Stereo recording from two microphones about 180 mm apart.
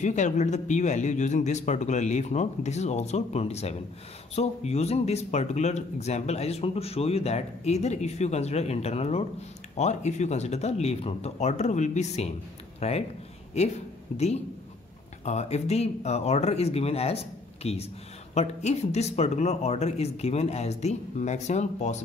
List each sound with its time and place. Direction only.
0.0 s speech: 40° left (ahead or behind)
14.1 s speech: 35° left (ahead or behind)